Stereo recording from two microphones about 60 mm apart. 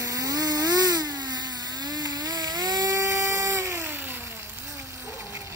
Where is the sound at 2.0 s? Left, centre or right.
Right.